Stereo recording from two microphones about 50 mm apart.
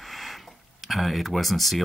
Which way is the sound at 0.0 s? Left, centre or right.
Centre.